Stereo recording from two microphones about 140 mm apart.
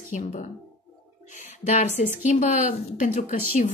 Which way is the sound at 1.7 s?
55° left (ahead or behind).